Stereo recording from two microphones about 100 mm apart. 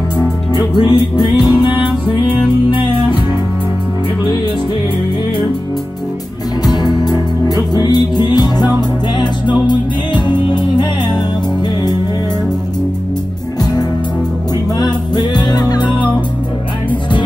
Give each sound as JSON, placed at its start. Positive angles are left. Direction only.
{"t": 0.6, "sound": "music", "side_deg": 50}
{"t": 6.6, "sound": "music", "side_deg": 40}
{"t": 14.8, "sound": "music", "side_deg": 45}